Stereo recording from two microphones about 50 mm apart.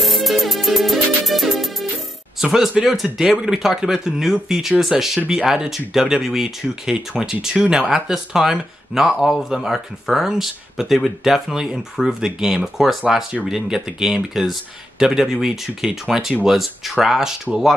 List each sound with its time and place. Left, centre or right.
0.0 s music: centre
2.4 s speech: centre